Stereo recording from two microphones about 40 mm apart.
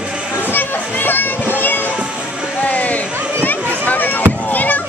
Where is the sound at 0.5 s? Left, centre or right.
Left.